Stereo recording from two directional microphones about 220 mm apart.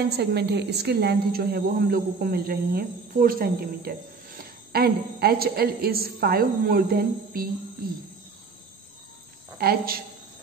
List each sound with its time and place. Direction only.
0.2 s a woman's voice: 50° right (ahead or behind)
9.6 s a woman's voice: 45° right (ahead or behind)